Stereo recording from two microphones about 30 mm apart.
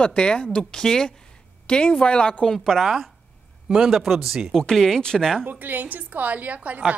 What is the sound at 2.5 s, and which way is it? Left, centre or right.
Speech, centre.